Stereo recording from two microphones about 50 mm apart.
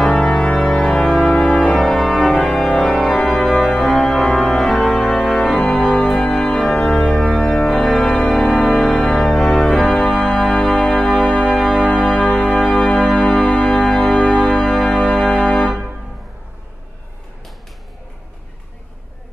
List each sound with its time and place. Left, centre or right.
0.0 s organ: centre
7.6 s music: centre
9.1 s organ: centre
11.4 s music: centre
11.8 s music: centre